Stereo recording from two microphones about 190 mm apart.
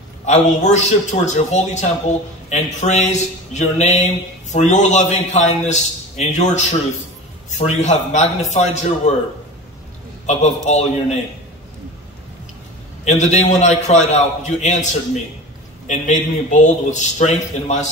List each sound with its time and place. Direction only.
0.2 s a man's voice: 40° left (ahead or behind)
10.2 s a man's voice: 35° left (ahead or behind)
13.0 s a man's voice: 35° left (ahead or behind)